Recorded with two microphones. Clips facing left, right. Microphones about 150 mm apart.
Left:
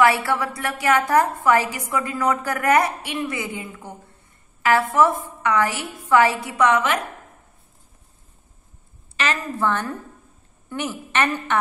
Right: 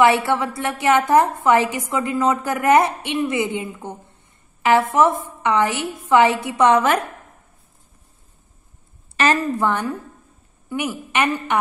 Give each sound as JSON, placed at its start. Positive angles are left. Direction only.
{"t": 0.0, "sound": "a woman's voice", "side_deg": -20}
{"t": 9.1, "sound": "a sound", "side_deg": -40}
{"t": 9.6, "sound": "a woman's voice", "side_deg": -15}